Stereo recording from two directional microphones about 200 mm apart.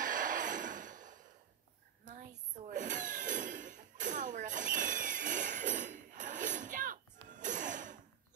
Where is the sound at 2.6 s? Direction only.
40° right (ahead or behind).